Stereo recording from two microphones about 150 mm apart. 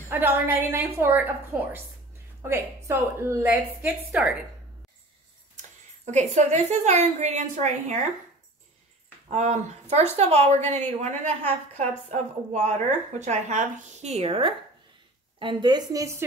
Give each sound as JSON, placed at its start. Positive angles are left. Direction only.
{"t": 0.1, "sound": "a woman's voice", "side_deg": -15}
{"t": 6.1, "sound": "a woman's voice", "side_deg": -50}
{"t": 9.3, "sound": "a woman's voice", "side_deg": -50}
{"t": 12.6, "sound": "a woman's voice", "side_deg": -50}